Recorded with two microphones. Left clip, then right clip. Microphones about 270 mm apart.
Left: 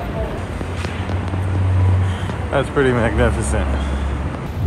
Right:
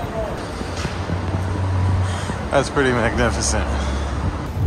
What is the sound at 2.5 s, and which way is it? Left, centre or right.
Speech, centre.